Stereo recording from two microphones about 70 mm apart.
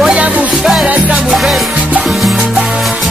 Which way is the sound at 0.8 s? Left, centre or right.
Right.